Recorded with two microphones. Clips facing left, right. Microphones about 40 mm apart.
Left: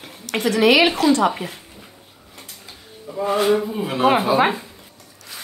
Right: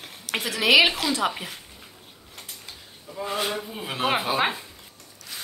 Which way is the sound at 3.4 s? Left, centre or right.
Left.